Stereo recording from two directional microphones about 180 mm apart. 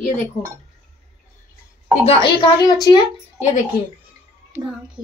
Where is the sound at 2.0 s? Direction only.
30° left (ahead or behind).